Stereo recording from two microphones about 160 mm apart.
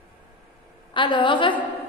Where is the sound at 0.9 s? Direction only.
30° left (ahead or behind).